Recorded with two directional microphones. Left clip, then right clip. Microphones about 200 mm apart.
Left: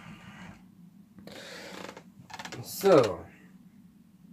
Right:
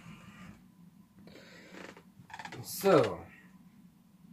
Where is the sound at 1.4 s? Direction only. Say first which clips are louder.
Left 11 dB; 40° left (ahead or behind).